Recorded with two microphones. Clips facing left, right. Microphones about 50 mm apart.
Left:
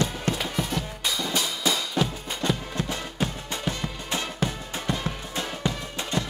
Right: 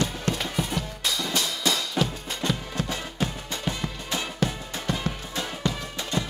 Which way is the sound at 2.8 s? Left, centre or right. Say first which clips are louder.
Even; centre.